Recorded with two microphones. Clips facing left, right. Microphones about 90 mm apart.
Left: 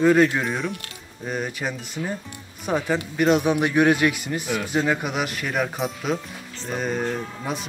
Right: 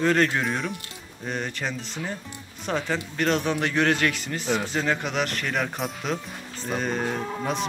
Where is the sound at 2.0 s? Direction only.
55° right (ahead or behind).